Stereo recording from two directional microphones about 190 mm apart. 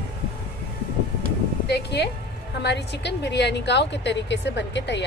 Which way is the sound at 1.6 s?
60° left (ahead or behind).